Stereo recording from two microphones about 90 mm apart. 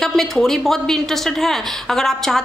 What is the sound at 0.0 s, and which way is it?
A woman's voice, 5° left (ahead or behind).